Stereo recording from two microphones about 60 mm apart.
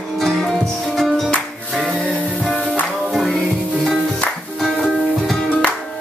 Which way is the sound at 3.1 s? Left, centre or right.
Centre.